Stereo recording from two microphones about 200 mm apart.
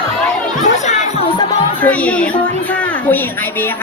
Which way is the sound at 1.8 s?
5° left (ahead or behind).